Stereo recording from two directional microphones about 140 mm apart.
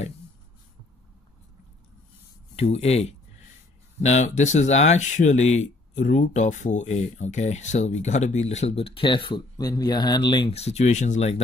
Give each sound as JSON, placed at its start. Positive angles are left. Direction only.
{"t": 2.5, "sound": "speech", "side_deg": 50}
{"t": 10.5, "sound": "speech", "side_deg": 50}